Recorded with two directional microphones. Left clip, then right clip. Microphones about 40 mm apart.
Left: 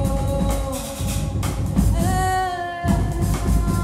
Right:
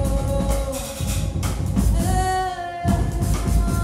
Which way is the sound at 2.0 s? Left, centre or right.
Left.